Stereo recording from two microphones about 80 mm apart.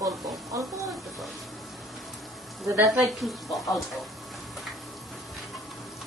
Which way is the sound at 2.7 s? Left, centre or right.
Right.